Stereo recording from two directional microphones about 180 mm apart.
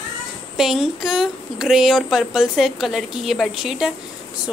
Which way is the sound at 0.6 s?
Centre (ahead or behind).